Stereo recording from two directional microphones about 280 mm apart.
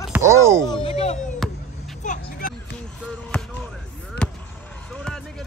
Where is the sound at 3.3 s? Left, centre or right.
Centre.